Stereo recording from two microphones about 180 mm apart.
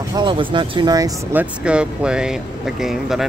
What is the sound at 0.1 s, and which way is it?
Speech, 25° right (ahead or behind).